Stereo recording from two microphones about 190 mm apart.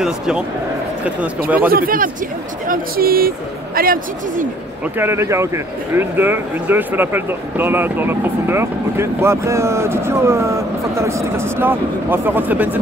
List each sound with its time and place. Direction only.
1.7 s speech: 50° right (ahead or behind)
4.9 s speech: 15° right (ahead or behind)